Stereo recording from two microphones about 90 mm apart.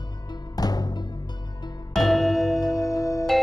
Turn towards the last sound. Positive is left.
turn(degrees=35)  # may be behind; listen again after turning